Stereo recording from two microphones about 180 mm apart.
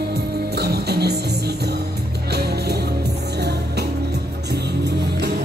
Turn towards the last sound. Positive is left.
turn(degrees=-65)  # may be behind; listen again after turning